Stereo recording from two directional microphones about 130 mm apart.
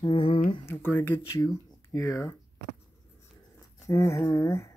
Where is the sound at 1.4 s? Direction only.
30° left (ahead or behind).